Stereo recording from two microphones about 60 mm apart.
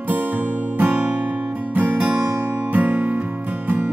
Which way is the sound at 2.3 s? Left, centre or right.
Right.